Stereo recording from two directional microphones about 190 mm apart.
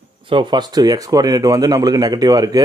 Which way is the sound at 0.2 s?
25° right (ahead or behind).